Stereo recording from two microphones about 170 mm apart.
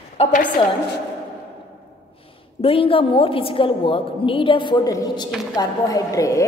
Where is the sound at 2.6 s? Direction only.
35° left (ahead or behind).